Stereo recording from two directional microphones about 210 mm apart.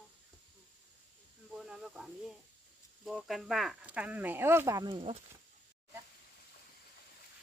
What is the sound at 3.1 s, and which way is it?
Speech, centre (ahead or behind).